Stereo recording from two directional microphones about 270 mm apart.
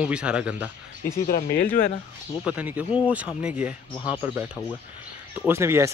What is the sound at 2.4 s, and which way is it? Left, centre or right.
Speech, centre.